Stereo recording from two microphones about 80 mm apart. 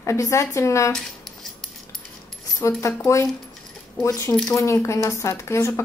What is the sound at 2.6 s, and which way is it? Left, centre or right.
Speech, left.